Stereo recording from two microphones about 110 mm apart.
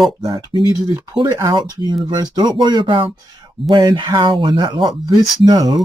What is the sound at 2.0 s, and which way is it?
Speech, 40° right (ahead or behind).